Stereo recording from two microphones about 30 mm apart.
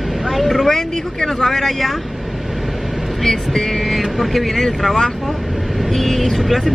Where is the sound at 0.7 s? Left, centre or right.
Centre.